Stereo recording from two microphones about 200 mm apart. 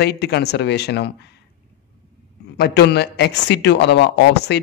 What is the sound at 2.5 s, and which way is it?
A man's voice, 55° left (ahead or behind).